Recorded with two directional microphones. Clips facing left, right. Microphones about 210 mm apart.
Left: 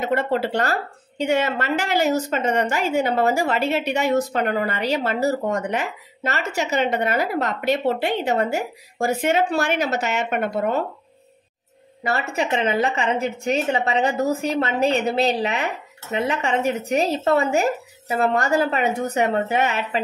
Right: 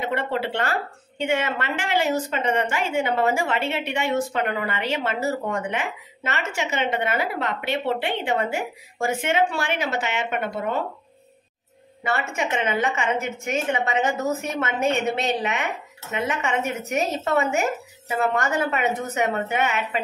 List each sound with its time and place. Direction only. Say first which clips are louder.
0.0 s a woman's voice: left 4 dB; 40° left (ahead or behind)
12.0 s a woman's voice: left 2 dB; 35° left (ahead or behind)